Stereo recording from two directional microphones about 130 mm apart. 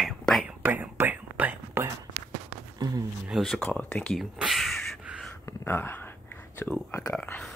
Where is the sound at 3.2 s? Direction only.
Centre (ahead or behind).